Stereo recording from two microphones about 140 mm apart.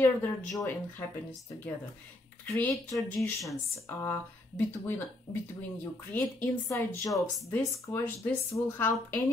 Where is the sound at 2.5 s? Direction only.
20° left (ahead or behind).